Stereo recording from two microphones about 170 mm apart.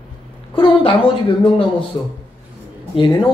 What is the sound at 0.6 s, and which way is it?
Speech, 30° left (ahead or behind).